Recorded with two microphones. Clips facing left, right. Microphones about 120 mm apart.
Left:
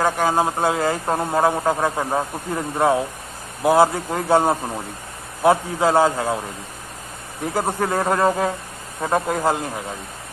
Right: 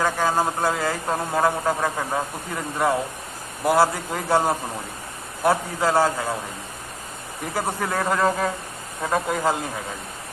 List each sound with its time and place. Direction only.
0.0 s speech: 15° left (ahead or behind)
7.5 s speech: 15° left (ahead or behind)